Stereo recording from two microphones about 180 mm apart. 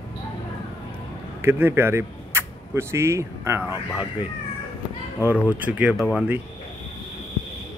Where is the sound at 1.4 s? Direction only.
15° right (ahead or behind).